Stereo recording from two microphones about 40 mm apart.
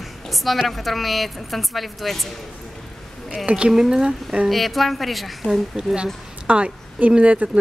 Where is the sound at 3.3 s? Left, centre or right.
Right.